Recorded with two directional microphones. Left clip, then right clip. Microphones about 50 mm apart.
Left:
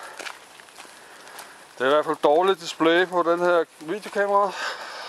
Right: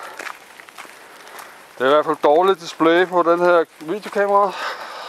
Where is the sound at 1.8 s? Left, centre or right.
Right.